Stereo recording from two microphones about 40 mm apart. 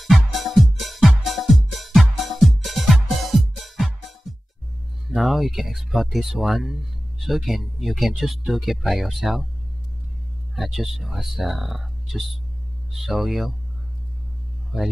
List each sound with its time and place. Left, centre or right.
0.0 s music: centre
5.0 s speech: centre
10.5 s speech: centre